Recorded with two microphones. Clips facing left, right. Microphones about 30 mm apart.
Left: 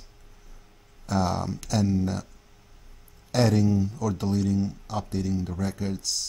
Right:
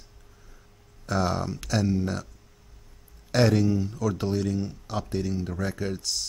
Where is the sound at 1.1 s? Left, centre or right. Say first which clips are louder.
Even; centre.